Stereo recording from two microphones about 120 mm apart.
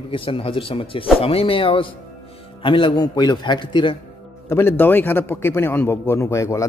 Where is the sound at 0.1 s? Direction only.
45° left (ahead or behind).